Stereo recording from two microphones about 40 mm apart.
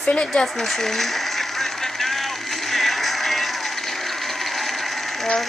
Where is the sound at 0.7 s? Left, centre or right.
Centre.